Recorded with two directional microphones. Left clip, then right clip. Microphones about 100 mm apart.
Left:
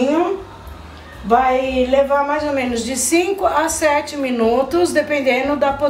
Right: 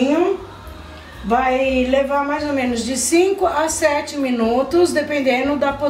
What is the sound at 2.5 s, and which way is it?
A woman's voice, 25° left (ahead or behind).